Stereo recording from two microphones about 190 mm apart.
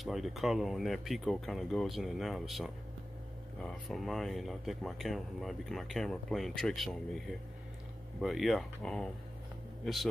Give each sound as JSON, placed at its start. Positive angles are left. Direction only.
{"t": 0.0, "sound": "speech", "side_deg": 0}
{"t": 8.2, "sound": "speech", "side_deg": 0}